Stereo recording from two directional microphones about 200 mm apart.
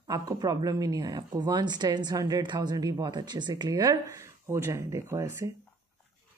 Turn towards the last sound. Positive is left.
turn(degrees=-15)  # may be behind; listen again after turning